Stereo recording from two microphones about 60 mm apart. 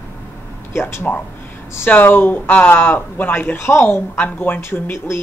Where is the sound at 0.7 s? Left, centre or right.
Left.